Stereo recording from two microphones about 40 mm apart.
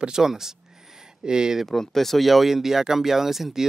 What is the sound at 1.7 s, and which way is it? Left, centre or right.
Speech, centre.